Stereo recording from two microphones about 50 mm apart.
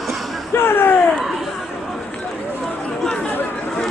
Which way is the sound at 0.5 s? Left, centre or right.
Left.